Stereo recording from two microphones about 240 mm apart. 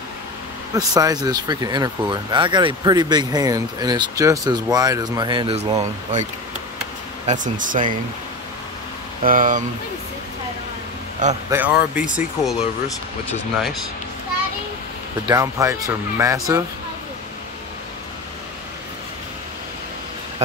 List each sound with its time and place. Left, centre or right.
0.7 s speech: centre
7.2 s speech: right
9.2 s speech: right
11.2 s speech: right
11.5 s speech: centre
15.2 s speech: centre